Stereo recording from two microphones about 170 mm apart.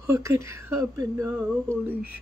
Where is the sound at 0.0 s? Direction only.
15° right (ahead or behind).